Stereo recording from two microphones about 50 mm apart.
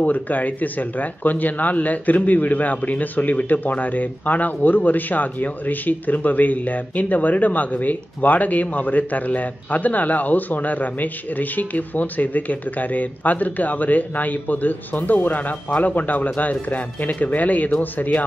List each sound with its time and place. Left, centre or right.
0.0 s speech: left